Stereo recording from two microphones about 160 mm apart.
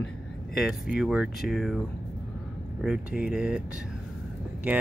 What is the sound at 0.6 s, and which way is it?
Speech, centre (ahead or behind).